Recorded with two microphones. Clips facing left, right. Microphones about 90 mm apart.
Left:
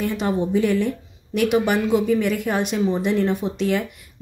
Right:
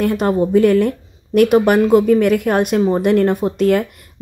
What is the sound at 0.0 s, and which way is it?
A woman's voice, 50° right (ahead or behind).